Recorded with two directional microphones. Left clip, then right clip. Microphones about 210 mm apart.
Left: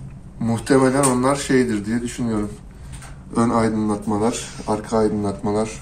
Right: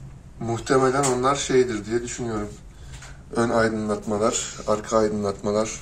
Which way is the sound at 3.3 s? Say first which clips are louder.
Left 2 dB; 40° right (ahead or behind).